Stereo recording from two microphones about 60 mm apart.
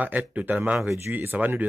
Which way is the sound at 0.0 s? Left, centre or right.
Right.